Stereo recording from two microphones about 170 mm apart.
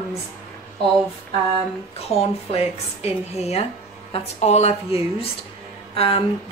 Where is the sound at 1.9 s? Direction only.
35° left (ahead or behind).